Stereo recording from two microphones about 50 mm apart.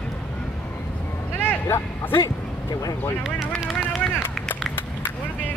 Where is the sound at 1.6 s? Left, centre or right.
Left.